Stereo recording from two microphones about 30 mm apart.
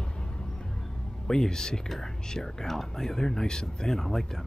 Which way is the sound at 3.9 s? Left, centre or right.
Centre.